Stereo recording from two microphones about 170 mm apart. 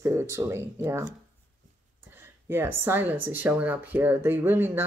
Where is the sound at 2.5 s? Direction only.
15° right (ahead or behind).